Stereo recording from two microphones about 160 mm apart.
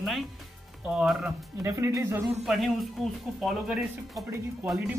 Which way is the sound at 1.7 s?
20° right (ahead or behind).